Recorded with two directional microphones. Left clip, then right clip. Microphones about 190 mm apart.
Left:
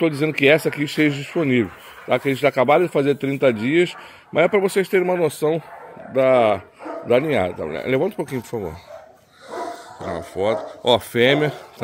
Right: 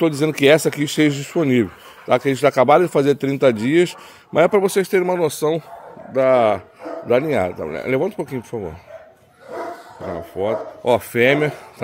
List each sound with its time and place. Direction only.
0.0 s speech: 20° right (ahead or behind)
10.0 s speech: 5° right (ahead or behind)